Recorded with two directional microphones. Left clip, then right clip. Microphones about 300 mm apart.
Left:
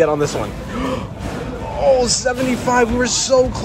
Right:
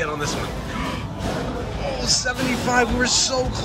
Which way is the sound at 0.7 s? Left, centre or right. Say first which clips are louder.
Left 7 dB; centre.